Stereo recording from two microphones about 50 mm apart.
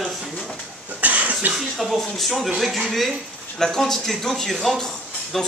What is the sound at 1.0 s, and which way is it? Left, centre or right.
Cough, right.